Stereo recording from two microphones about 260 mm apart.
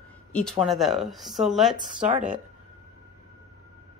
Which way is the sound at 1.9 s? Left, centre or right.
Right.